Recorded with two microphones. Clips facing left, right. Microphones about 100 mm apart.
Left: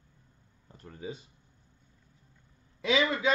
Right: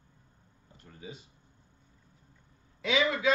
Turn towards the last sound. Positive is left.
turn(degrees=30)  # may be behind; listen again after turning